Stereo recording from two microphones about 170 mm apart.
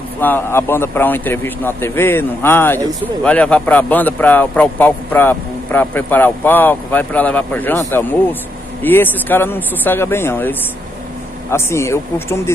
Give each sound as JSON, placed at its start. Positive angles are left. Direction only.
{"t": 0.2, "sound": "speech", "side_deg": 10}
{"t": 11.5, "sound": "speech", "side_deg": 15}